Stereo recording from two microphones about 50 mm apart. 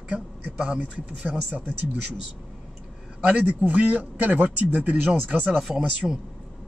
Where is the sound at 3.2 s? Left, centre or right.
Right.